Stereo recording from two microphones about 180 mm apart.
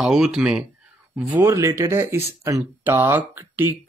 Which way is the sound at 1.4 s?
15° right (ahead or behind).